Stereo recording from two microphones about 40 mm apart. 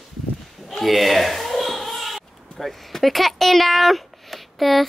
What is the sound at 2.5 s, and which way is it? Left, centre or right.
A woman's voice, centre.